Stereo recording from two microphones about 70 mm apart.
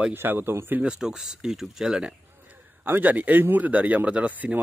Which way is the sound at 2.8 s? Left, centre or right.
Right.